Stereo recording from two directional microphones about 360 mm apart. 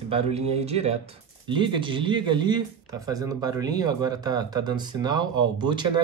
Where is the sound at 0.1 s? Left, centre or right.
Centre.